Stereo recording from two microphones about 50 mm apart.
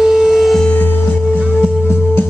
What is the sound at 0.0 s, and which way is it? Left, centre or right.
Music, centre.